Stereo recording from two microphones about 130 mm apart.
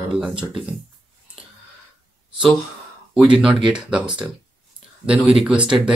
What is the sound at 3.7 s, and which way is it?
Speech, 5° right (ahead or behind).